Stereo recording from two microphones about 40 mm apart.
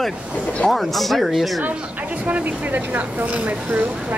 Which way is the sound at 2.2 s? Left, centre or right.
Right.